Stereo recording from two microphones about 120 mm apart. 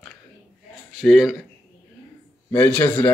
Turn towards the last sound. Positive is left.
turn(degrees=15)  # may be behind; listen again after turning